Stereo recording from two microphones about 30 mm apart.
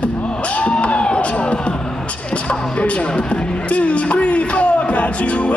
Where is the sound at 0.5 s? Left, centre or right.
Left.